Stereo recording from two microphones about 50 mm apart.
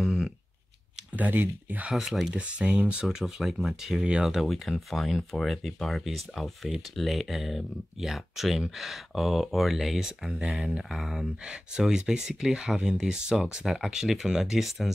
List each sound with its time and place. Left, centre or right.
0.0 s a sound: centre
1.1 s speech: right
1.9 s speech: centre
2.3 s speech: right; by 11.2 s centre
11.4 s speech: centre